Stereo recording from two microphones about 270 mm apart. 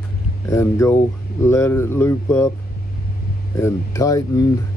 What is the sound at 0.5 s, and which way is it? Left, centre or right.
Speech, centre.